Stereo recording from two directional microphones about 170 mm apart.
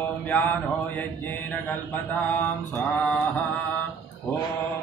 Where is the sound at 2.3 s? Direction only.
10° left (ahead or behind).